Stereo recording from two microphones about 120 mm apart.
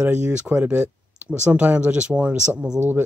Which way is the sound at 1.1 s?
10° right (ahead or behind).